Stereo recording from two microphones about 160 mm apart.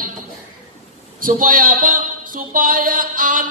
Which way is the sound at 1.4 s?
60° right (ahead or behind).